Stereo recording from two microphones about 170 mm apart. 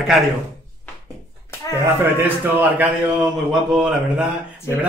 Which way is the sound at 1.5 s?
15° left (ahead or behind).